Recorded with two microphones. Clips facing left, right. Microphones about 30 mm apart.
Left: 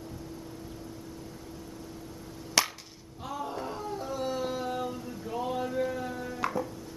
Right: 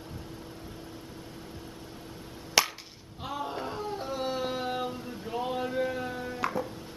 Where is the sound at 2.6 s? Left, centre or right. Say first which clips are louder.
Right 2 dB; centre.